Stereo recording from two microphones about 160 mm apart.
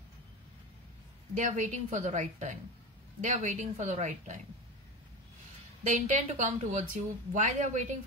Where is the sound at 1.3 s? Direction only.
50° right (ahead or behind).